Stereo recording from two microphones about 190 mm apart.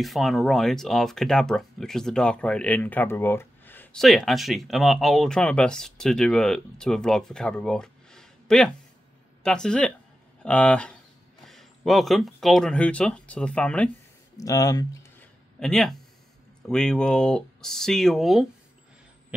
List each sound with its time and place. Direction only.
0.0 s speech: centre (ahead or behind)
14.3 s a sound: 20° left (ahead or behind)
15.6 s speech: centre (ahead or behind)